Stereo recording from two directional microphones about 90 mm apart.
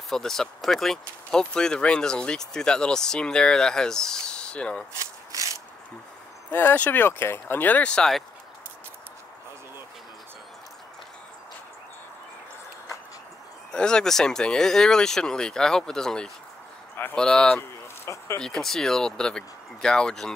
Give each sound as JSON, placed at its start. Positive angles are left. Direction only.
{"t": 0.1, "sound": "speech", "side_deg": 5}
{"t": 6.5, "sound": "speech", "side_deg": 20}
{"t": 13.7, "sound": "speech", "side_deg": 10}
{"t": 17.6, "sound": "a sound", "side_deg": 30}
{"t": 18.4, "sound": "speech", "side_deg": 5}